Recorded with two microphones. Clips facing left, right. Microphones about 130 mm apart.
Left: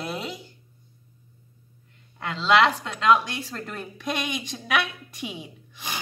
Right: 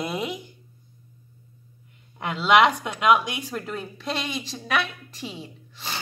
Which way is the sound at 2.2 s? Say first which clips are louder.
Right 2 dB; 15° right (ahead or behind).